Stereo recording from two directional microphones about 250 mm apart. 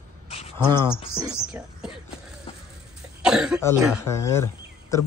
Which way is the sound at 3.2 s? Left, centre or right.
Centre.